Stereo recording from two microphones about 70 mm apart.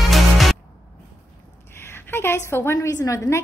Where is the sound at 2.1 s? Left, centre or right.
Left.